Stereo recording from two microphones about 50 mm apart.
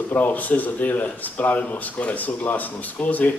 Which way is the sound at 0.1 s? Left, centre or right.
Left.